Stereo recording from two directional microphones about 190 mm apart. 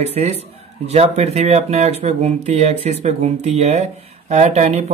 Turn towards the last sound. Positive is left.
turn(degrees=-35)  # may be behind; listen again after turning